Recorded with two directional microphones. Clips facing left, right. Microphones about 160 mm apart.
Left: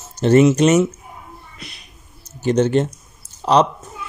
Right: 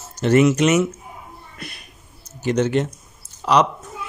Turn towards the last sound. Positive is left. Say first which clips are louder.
# left 2 dB
turn(degrees=30)  # may be behind; listen again after turning